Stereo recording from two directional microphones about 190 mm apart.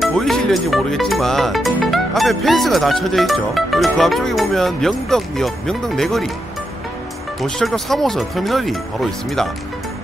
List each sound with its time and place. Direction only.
0.0 s speech: centre (ahead or behind)
7.4 s speech: 5° left (ahead or behind)